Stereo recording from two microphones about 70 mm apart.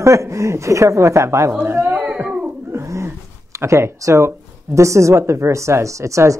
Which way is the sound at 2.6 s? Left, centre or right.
Right.